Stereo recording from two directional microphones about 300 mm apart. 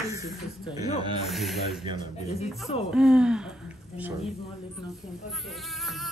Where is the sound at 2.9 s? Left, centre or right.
Centre.